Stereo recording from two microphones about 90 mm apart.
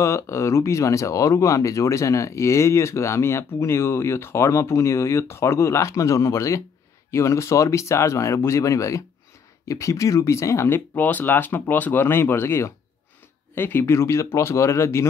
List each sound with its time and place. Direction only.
0.0 s speech: 35° left (ahead or behind)